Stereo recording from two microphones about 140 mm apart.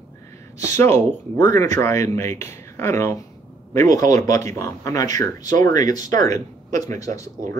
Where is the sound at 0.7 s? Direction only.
15° left (ahead or behind).